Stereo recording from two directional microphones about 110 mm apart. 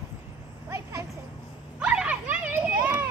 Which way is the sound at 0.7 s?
25° right (ahead or behind).